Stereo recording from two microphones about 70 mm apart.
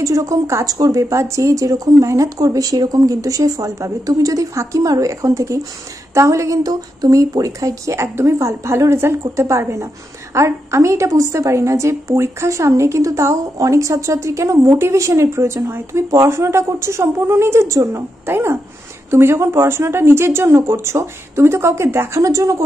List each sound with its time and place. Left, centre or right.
0.0 s a woman's voice: right
0.7 s a woman's voice: right
22.2 s a woman's voice: right